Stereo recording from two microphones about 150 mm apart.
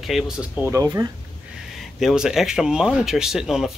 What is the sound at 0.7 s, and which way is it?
Speech, 20° right (ahead or behind).